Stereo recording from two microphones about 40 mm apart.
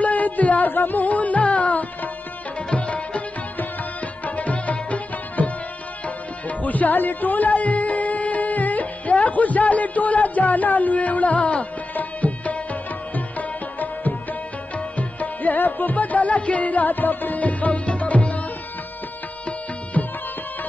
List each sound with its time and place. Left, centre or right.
0.0 s music: left
4.4 s music: left
11.9 s tabla: left
13.1 s music: left